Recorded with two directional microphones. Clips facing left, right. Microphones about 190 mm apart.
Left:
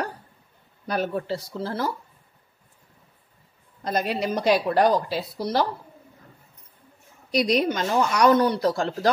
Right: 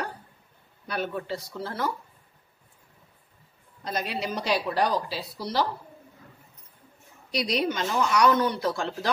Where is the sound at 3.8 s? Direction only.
45° left (ahead or behind).